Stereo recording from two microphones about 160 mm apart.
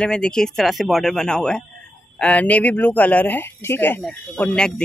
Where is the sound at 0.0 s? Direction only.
5° left (ahead or behind).